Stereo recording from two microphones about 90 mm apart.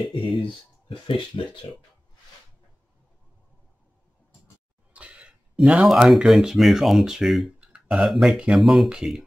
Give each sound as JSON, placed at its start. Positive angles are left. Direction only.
{"t": 0.0, "sound": "speech", "side_deg": 60}
{"t": 0.4, "sound": "speech", "side_deg": 80}
{"t": 4.9, "sound": "speech", "side_deg": -15}